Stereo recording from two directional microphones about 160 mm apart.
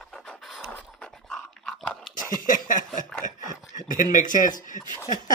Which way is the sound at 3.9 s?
55° left (ahead or behind).